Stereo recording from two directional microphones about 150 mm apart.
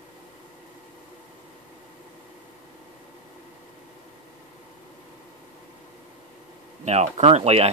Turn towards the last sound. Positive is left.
turn(degrees=-45)  # may be behind; listen again after turning